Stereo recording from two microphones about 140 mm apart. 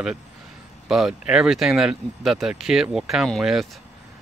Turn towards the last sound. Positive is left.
turn(degrees=0)  # may be behind; listen again after turning